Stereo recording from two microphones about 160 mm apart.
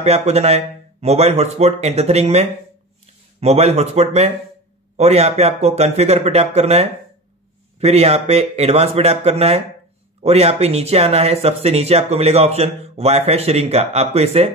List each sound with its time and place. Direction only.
0.0 s speech: 40° right (ahead or behind)